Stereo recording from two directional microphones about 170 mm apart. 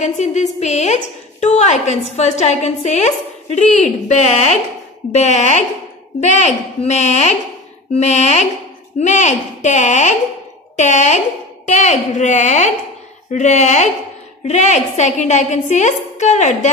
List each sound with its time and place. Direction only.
0.0 s a woman's voice: 45° left (ahead or behind)